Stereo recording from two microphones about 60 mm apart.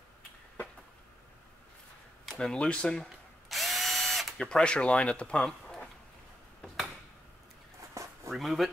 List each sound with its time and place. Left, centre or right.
2.2 s speech: centre
3.4 s drill: centre
4.5 s speech: centre
5.4 s a sound: centre
7.9 s a sound: right
8.3 s speech: centre